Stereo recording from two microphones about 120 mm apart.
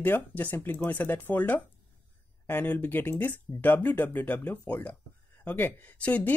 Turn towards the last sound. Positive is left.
turn(degrees=10)  # may be behind; listen again after turning